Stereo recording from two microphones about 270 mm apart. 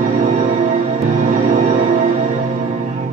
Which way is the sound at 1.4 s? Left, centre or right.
Right.